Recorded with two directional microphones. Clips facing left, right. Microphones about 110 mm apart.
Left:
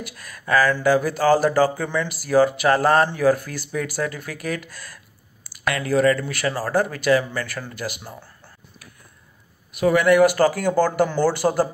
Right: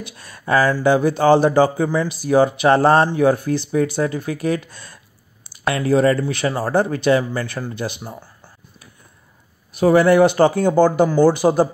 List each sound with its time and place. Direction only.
0.0 s speech: 25° right (ahead or behind)
9.7 s a man's voice: 30° right (ahead or behind); by 11.7 s 15° right (ahead or behind)